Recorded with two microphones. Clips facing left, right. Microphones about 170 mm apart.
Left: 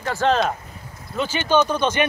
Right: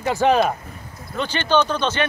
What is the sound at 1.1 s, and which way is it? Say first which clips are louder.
Speech: even; 5° left (ahead or behind).